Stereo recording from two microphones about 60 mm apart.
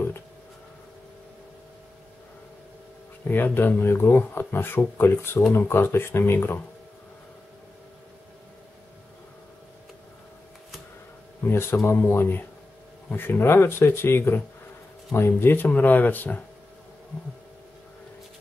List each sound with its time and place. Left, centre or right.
3.3 s speech: left
11.4 s speech: left